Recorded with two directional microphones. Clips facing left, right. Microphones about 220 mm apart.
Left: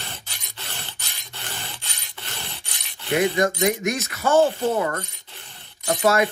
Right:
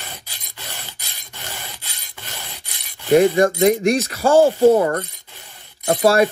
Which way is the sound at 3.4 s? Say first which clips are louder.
Right 6 dB; 30° right (ahead or behind).